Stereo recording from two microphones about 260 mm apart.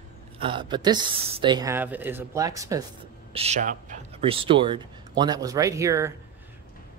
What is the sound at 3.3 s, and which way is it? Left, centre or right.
Speech, right.